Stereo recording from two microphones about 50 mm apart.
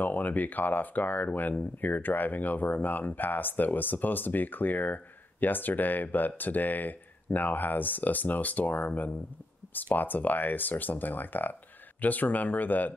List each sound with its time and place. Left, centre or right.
0.0 s speech: left